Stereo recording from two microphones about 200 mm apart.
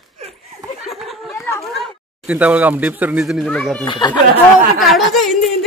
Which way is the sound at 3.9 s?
20° left (ahead or behind).